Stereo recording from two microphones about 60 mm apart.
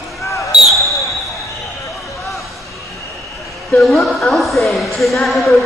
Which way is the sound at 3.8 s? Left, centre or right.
Centre.